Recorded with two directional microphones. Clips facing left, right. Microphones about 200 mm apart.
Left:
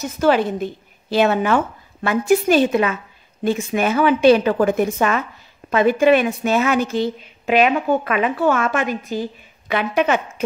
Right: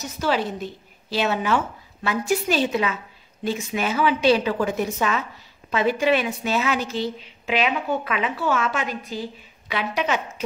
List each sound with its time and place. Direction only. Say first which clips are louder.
0.0 s a woman's voice: left 7 dB; 55° left (ahead or behind)